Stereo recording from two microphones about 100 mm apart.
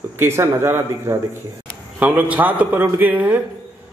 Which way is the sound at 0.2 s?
25° right (ahead or behind).